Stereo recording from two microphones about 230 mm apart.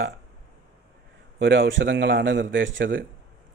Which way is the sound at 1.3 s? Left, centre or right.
Right.